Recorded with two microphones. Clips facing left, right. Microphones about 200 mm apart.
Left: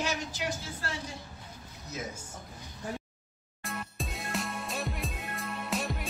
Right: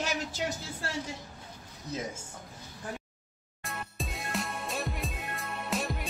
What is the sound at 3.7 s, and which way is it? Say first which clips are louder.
Music: left 1 dB; centre (ahead or behind).